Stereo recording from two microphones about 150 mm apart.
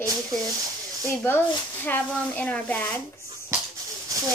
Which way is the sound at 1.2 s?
15° left (ahead or behind).